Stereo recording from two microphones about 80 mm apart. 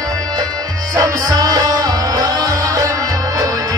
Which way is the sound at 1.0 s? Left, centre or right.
Right.